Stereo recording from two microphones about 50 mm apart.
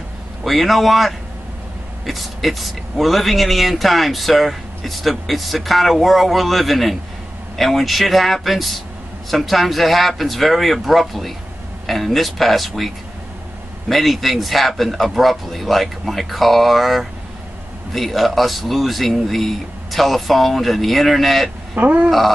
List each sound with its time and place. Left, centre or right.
0.4 s a man's voice: centre
21.7 s speech: right